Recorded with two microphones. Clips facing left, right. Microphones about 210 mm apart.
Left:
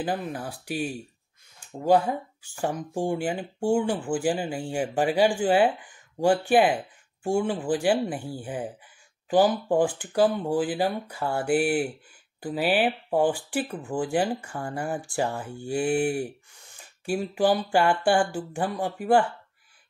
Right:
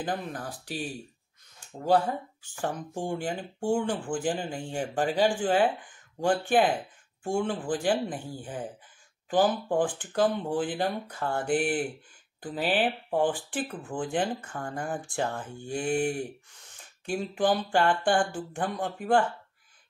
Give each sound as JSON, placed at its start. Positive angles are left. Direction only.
{"t": 0.0, "sound": "speech", "side_deg": 10}
{"t": 1.9, "sound": "speech", "side_deg": 10}